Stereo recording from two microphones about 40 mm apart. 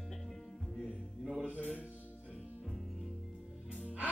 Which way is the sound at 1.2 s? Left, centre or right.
Centre.